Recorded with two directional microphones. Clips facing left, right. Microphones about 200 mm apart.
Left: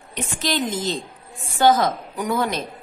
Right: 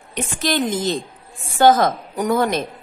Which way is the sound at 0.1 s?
55° right (ahead or behind).